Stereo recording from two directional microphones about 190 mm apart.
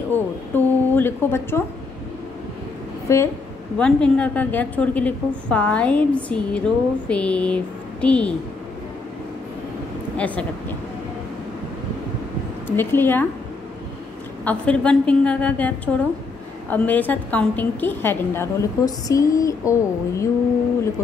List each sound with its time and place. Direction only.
0.1 s a woman's voice: 10° left (ahead or behind)
3.1 s a woman's voice: 15° left (ahead or behind)
10.1 s speech: 5° left (ahead or behind)
12.6 s a woman's voice: 10° left (ahead or behind)
14.4 s a woman's voice: 5° left (ahead or behind)